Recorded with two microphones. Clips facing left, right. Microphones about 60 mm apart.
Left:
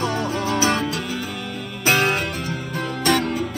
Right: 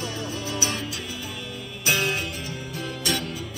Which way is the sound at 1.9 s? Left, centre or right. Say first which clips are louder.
Left 6 dB; left.